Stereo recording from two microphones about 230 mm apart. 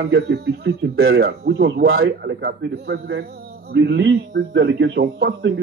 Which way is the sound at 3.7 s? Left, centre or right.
Right.